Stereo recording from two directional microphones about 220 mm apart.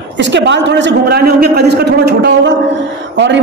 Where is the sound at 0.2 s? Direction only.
55° right (ahead or behind).